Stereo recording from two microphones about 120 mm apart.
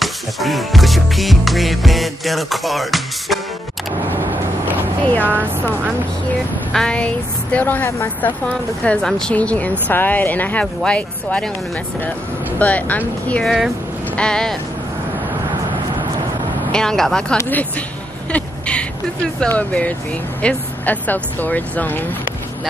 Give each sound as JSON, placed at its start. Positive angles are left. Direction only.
{"t": 0.0, "sound": "music", "side_deg": 0}
{"t": 5.2, "sound": "speech", "side_deg": -15}
{"t": 6.7, "sound": "speech", "side_deg": 5}
{"t": 12.5, "sound": "speech", "side_deg": 10}
{"t": 13.3, "sound": "music", "side_deg": 0}
{"t": 16.7, "sound": "music", "side_deg": 5}
{"t": 17.4, "sound": "speech", "side_deg": 15}